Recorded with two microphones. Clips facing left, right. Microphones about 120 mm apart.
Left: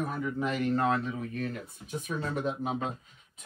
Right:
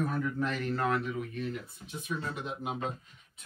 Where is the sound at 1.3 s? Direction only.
50° left (ahead or behind).